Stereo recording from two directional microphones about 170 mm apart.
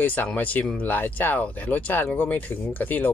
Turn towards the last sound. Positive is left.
turn(degrees=10)  # may be behind; listen again after turning